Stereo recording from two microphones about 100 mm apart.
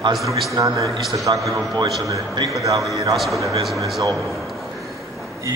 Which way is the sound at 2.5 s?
35° right (ahead or behind).